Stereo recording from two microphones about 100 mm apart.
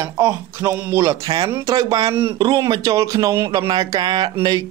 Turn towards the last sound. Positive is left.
turn(degrees=-45)  # may be behind; listen again after turning